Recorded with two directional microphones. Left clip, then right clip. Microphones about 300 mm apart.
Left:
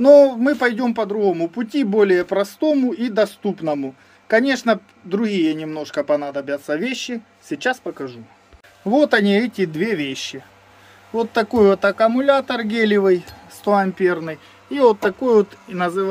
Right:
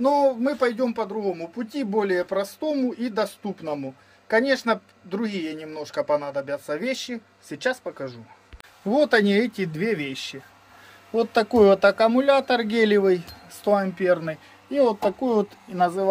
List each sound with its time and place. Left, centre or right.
0.0 s speech: centre